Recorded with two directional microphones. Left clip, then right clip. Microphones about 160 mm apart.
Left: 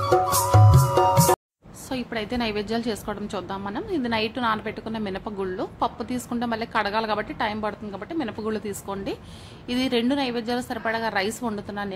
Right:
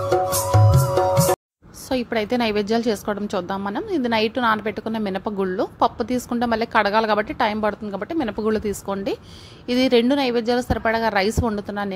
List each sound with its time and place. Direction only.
0.1 s music: centre (ahead or behind)
1.9 s a woman's voice: 40° right (ahead or behind)